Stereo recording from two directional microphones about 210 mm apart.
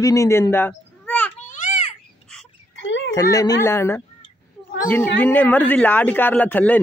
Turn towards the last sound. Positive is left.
turn(degrees=10)  # may be behind; listen again after turning